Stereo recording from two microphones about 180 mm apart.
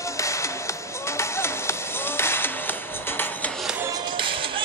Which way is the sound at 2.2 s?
15° left (ahead or behind).